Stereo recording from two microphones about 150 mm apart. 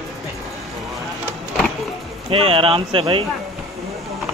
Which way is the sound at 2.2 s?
35° right (ahead or behind).